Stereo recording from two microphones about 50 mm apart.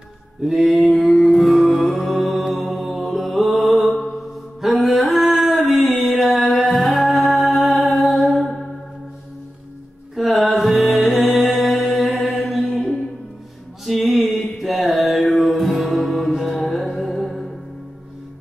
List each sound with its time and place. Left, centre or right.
0.4 s mantra: centre
4.6 s music: centre
10.1 s music: centre
12.1 s mantra: left
12.4 s music: centre
13.8 s mantra: centre
15.3 s music: centre